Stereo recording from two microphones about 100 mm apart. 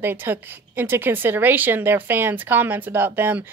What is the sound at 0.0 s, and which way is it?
A woman's voice, 20° right (ahead or behind).